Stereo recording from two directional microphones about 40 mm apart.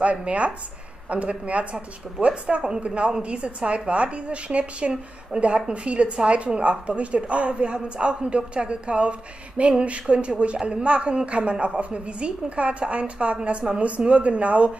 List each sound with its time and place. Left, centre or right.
0.0 s a woman's voice: right